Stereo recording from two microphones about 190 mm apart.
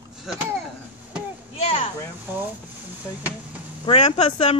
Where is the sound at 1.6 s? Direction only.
30° left (ahead or behind).